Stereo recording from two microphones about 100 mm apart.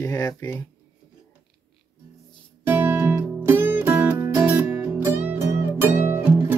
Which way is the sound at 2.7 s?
20° right (ahead or behind).